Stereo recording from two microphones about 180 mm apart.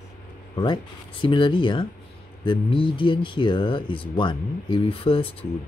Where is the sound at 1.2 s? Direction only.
25° left (ahead or behind).